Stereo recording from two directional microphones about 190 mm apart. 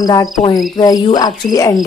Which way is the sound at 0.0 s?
20° left (ahead or behind).